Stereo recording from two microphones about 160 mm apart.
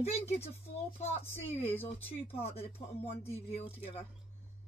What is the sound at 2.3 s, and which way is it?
Speech, 40° left (ahead or behind).